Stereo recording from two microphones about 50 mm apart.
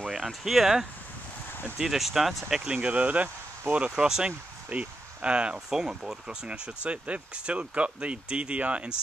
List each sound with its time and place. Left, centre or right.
0.0 s a sound: centre
0.3 s speech: centre
2.7 s speech: right